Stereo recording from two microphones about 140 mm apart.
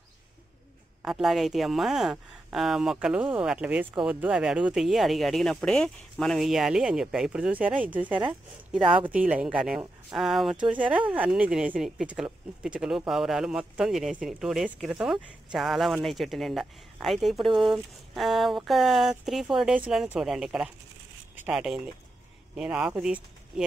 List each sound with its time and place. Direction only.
1.0 s speech: centre (ahead or behind)
8.8 s speech: 35° right (ahead or behind)
9.3 s speech: 5° right (ahead or behind)